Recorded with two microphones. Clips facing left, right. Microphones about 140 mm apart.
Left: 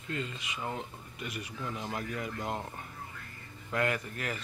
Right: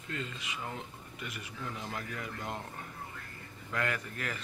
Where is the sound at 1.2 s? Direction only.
20° left (ahead or behind).